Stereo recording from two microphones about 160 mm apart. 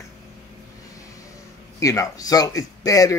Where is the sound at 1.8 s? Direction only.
20° left (ahead or behind).